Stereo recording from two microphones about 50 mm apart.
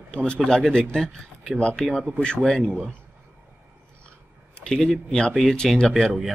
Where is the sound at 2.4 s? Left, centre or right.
Centre.